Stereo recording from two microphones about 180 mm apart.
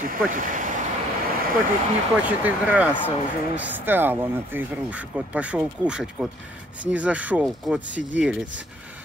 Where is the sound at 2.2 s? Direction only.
10° right (ahead or behind).